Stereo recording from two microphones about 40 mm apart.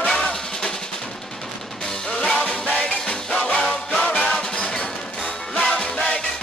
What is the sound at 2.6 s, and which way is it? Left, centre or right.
Music, left.